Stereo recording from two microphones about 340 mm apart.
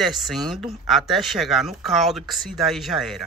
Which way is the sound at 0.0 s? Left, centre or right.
Centre.